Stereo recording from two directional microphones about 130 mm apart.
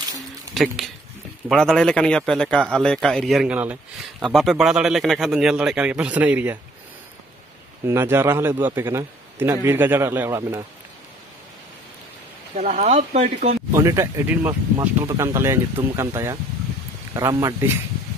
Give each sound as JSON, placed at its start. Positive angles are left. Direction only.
{"t": 1.5, "sound": "speech", "side_deg": 5}
{"t": 3.4, "sound": "a man's voice", "side_deg": -10}
{"t": 4.2, "sound": "speech", "side_deg": 0}
{"t": 7.8, "sound": "a man's voice", "side_deg": -20}
{"t": 12.5, "sound": "speech", "side_deg": -55}
{"t": 13.7, "sound": "speech", "side_deg": -20}